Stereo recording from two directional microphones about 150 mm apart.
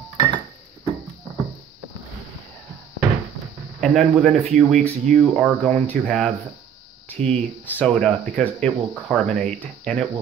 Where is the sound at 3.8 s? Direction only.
Centre (ahead or behind).